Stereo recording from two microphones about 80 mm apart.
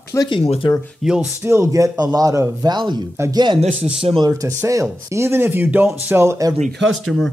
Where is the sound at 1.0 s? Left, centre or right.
Centre.